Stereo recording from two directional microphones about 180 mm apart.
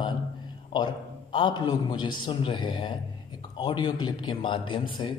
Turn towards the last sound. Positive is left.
turn(degrees=25)  # may be behind; listen again after turning